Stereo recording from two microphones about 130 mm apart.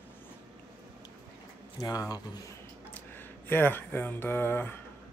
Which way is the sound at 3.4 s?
15° left (ahead or behind).